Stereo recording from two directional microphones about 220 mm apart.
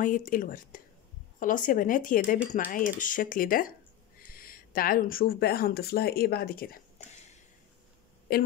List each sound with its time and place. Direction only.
0.0 s speech: 40° left (ahead or behind)